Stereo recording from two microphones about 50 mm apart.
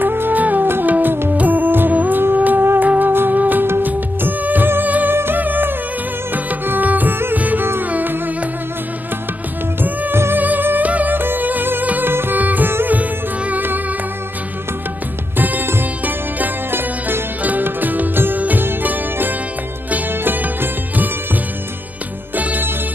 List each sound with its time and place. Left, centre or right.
0.0 s music: right
1.3 s music: right
5.1 s music: right
9.8 s music: right
11.1 s music: right
12.1 s music: right
12.4 s music: right
15.3 s music: right
17.4 s music: right